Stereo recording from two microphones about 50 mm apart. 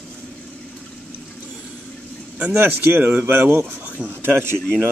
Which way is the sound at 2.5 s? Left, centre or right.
Right.